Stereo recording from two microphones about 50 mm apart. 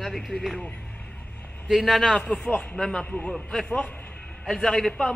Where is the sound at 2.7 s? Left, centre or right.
Centre.